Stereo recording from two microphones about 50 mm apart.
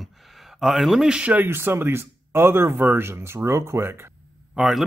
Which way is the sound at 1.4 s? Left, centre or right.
Right.